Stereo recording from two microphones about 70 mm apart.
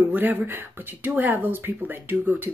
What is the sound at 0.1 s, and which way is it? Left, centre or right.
Speech, right.